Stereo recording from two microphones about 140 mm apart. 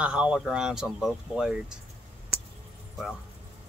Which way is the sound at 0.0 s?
5° right (ahead or behind).